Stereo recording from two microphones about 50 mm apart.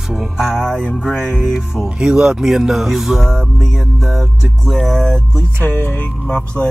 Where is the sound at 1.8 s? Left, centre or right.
Centre.